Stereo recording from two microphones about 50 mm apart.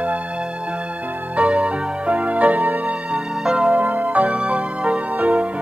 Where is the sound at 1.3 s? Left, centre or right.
Right.